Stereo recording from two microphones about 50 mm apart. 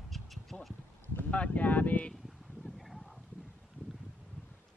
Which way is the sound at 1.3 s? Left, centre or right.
Left.